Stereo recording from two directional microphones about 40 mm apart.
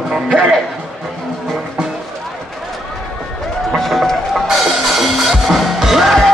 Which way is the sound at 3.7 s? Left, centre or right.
Centre.